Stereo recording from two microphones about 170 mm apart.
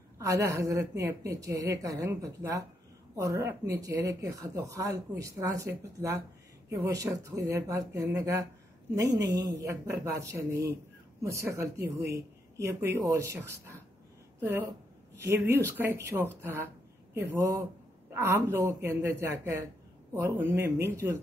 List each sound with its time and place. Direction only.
0.2 s speech: 20° right (ahead or behind)